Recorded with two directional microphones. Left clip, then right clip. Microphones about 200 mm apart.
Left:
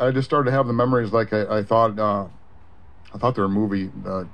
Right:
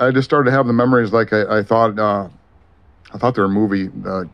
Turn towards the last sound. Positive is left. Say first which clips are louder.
# right 5 dB
turn(degrees=-35)  # may be behind; listen again after turning